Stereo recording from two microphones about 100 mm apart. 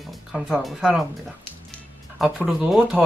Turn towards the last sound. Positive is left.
turn(degrees=0)  # may be behind; listen again after turning